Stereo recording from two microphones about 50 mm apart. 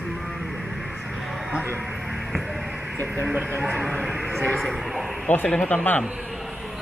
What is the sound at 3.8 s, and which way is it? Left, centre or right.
Speech, centre.